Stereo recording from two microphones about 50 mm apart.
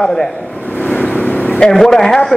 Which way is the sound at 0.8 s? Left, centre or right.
Left.